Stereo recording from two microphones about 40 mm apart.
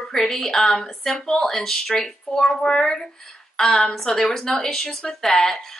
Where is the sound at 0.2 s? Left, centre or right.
Centre.